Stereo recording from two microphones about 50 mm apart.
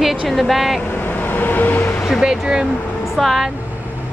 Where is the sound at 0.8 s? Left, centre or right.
Left.